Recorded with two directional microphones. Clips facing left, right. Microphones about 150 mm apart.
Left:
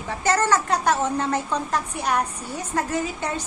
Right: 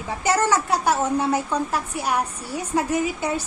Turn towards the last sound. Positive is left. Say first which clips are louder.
# right 3 dB
turn(degrees=-10)  # may be behind; listen again after turning